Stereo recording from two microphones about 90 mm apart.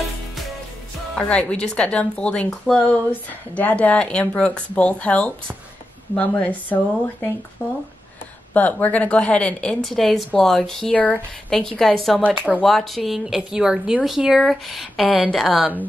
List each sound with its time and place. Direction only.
1.1 s speech: 15° left (ahead or behind)
8.5 s speech: 20° left (ahead or behind)
9.8 s speech: centre (ahead or behind)